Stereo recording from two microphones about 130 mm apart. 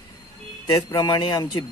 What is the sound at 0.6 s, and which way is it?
Speech, 30° left (ahead or behind).